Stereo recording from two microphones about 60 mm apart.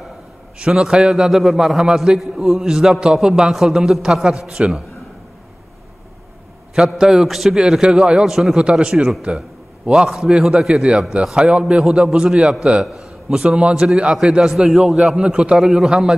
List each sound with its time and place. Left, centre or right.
0.6 s a man's voice: centre
6.9 s a man's voice: centre
8.5 s a man's voice: centre
15.2 s a man's voice: centre
15.5 s a man's voice: centre